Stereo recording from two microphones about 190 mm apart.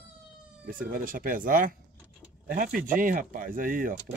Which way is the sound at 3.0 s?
45° right (ahead or behind).